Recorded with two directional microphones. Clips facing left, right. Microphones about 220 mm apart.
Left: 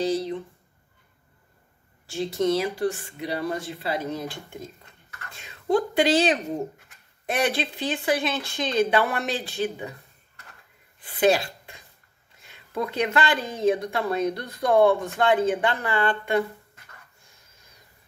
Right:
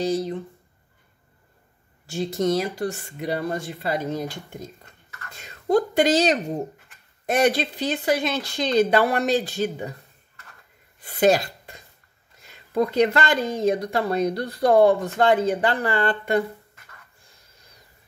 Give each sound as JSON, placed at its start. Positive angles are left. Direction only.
{"t": 2.0, "sound": "speech", "side_deg": -45}
{"t": 11.1, "sound": "speech", "side_deg": -45}